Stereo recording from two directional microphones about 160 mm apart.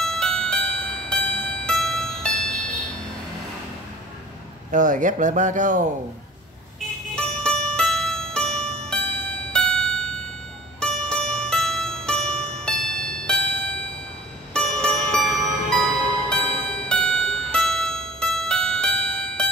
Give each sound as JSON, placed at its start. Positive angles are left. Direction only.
{"t": 0.0, "sound": "music", "side_deg": 5}
{"t": 4.6, "sound": "a man's voice", "side_deg": -55}
{"t": 7.2, "sound": "music", "side_deg": 5}
{"t": 10.8, "sound": "zither", "side_deg": 5}
{"t": 14.5, "sound": "music", "side_deg": 5}